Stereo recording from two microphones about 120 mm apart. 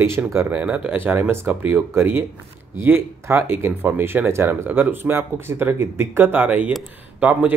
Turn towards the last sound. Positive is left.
turn(degrees=-15)  # may be behind; listen again after turning